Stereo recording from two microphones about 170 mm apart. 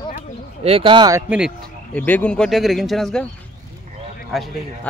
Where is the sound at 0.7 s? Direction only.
30° right (ahead or behind).